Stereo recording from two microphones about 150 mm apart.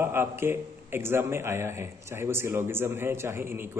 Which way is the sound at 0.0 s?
15° right (ahead or behind).